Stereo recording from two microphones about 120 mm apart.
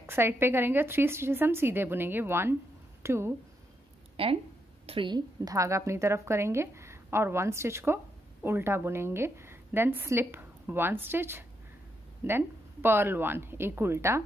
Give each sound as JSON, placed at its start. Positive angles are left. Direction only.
{"t": 0.0, "sound": "a woman's voice", "side_deg": -20}
{"t": 4.2, "sound": "a woman's voice", "side_deg": -50}